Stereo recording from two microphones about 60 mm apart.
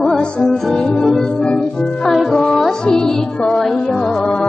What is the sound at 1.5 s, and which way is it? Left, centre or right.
Music, centre.